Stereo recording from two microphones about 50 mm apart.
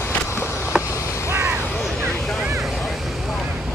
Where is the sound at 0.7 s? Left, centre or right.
Centre.